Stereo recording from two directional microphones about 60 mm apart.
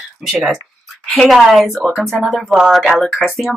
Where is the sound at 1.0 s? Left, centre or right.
Centre.